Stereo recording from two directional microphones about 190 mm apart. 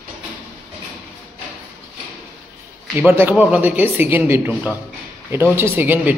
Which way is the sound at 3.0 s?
10° right (ahead or behind).